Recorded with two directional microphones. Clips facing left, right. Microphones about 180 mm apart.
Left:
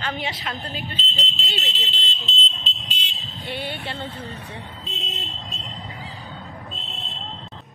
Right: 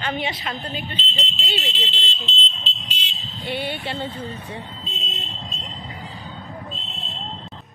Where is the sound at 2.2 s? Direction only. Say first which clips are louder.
Right 1 dB; 40° left (ahead or behind).